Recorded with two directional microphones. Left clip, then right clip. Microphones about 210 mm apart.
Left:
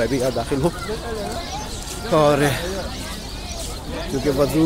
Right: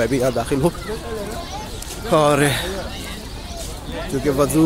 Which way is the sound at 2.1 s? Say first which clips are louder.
Right 1 dB; 25° right (ahead or behind).